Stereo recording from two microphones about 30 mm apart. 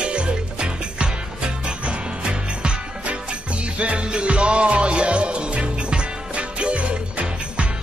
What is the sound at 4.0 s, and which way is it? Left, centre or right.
Music, right.